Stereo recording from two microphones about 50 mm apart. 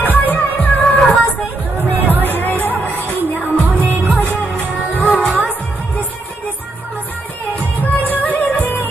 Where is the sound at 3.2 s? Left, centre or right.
Right.